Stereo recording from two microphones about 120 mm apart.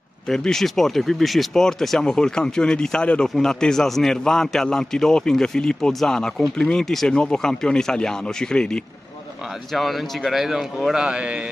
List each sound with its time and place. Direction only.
0.3 s speech: 5° left (ahead or behind)